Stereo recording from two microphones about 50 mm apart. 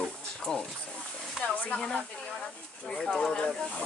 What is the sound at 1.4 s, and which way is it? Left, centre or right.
Speech, left.